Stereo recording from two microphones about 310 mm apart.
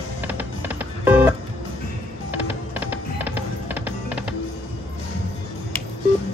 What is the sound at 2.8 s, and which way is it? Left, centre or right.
Music, centre.